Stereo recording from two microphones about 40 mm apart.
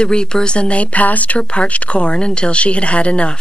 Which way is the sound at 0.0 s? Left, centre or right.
Left.